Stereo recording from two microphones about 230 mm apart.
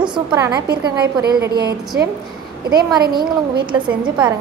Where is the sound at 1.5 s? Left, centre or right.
Right.